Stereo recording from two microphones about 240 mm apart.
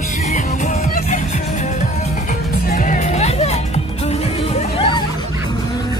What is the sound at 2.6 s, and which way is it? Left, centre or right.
Music, left.